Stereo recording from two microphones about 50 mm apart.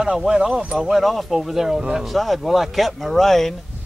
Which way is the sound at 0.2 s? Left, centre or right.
Centre.